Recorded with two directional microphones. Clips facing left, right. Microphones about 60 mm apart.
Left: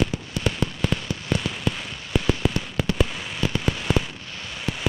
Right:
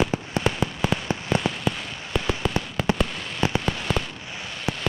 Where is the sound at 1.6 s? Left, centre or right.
Centre.